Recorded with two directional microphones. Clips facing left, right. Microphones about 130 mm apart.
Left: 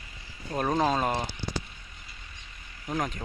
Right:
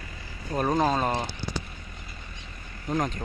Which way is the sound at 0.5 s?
5° right (ahead or behind).